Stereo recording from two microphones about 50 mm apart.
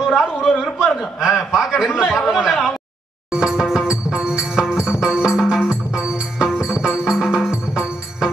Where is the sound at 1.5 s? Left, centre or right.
Centre.